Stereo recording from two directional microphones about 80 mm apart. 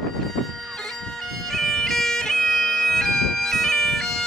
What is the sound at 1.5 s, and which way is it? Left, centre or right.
Bagpipes, centre.